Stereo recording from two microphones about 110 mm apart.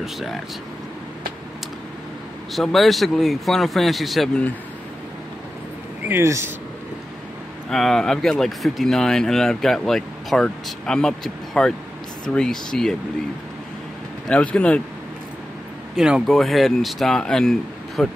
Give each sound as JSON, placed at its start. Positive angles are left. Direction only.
{"t": 0.0, "sound": "speech", "side_deg": 0}
{"t": 2.5, "sound": "speech", "side_deg": 0}
{"t": 6.0, "sound": "speech", "side_deg": -25}
{"t": 7.7, "sound": "speech", "side_deg": 5}
{"t": 14.2, "sound": "speech", "side_deg": 10}
{"t": 16.0, "sound": "speech", "side_deg": 0}